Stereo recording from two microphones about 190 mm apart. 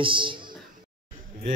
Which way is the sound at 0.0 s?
25° right (ahead or behind).